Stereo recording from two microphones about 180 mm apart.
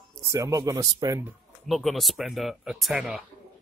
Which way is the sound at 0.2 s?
20° right (ahead or behind).